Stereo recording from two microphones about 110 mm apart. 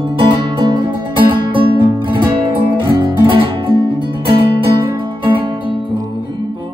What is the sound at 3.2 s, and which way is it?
Music, 50° right (ahead or behind).